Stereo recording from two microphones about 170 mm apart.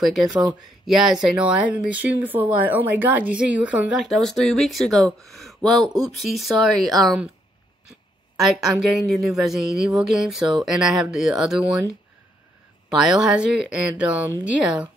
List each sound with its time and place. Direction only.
0.0 s speech: centre (ahead or behind)
8.8 s speech: centre (ahead or behind)
12.9 s speech: 5° right (ahead or behind)